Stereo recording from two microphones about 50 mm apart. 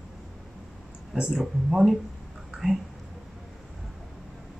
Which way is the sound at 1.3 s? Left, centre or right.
Centre.